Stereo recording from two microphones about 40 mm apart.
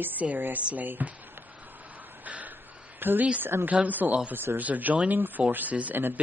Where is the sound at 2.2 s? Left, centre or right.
Right.